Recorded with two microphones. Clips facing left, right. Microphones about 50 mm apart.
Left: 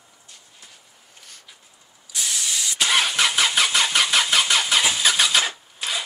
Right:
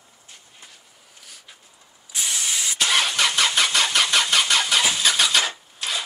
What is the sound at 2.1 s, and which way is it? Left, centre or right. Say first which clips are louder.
Spray: right 1 dB; right.